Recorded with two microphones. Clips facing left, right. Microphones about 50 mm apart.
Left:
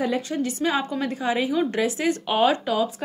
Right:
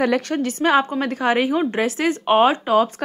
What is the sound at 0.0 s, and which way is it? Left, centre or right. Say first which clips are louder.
Speech: right 5 dB; right.